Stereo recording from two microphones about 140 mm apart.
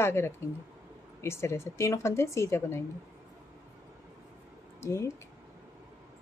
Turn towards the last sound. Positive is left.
turn(degrees=20)  # may be behind; listen again after turning